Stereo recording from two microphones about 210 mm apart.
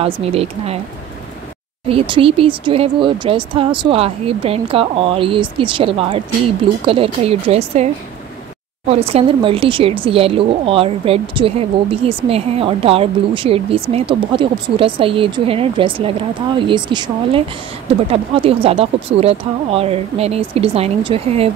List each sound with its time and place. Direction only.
0.0 s speech: 30° right (ahead or behind)
1.9 s speech: 25° right (ahead or behind)